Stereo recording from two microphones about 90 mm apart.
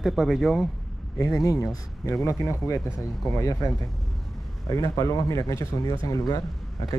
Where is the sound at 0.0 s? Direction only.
5° right (ahead or behind).